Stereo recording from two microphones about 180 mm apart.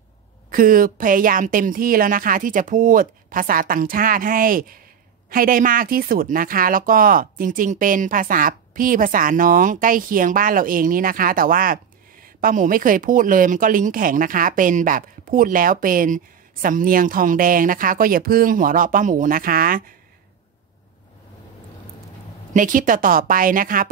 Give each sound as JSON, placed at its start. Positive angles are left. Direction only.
{"t": 0.5, "sound": "speech", "side_deg": -50}
{"t": 22.5, "sound": "speech", "side_deg": -45}